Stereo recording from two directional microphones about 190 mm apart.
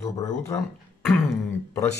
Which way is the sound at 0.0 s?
15° left (ahead or behind).